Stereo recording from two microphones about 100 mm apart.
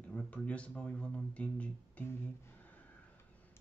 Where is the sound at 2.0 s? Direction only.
15° left (ahead or behind).